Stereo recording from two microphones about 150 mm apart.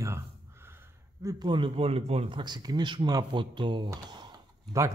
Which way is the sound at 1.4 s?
35° right (ahead or behind).